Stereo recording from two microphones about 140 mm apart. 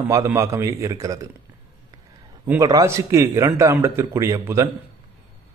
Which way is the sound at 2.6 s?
20° right (ahead or behind).